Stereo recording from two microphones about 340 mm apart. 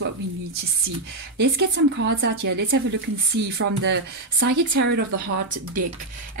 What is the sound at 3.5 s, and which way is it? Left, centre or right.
Speech, right.